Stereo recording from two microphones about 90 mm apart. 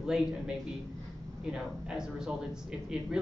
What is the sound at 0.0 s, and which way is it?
A man's voice, 5° right (ahead or behind).